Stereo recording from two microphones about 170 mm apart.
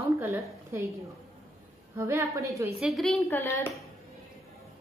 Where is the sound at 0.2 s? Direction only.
15° right (ahead or behind).